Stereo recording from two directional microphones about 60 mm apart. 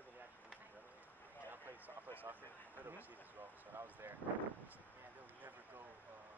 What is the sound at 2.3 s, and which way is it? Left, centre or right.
Speech, right.